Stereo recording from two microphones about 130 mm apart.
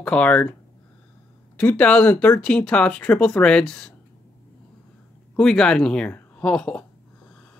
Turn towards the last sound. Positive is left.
turn(degrees=5)  # may be behind; listen again after turning